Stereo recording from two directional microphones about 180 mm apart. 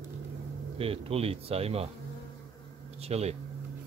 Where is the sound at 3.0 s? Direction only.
35° right (ahead or behind).